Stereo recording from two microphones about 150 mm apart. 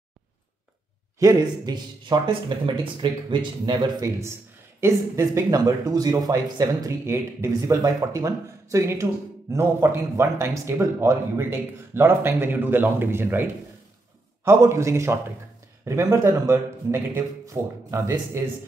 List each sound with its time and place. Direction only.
1.2 s speech: 25° right (ahead or behind)